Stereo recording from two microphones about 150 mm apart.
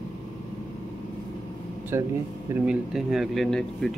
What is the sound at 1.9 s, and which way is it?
Speech, 15° right (ahead or behind).